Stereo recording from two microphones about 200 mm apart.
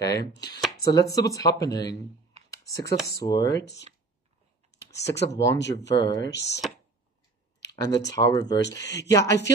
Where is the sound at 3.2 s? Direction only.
20° left (ahead or behind).